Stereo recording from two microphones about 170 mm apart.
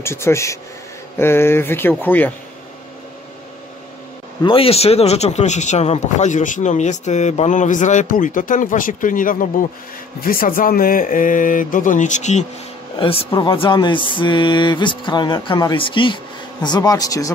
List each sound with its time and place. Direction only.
0.0 s speech: 15° left (ahead or behind)
4.4 s speech: 30° left (ahead or behind)
13.0 s speech: 35° left (ahead or behind)